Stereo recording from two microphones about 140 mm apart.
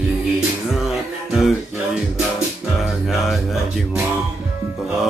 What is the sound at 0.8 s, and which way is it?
Music, 5° right (ahead or behind).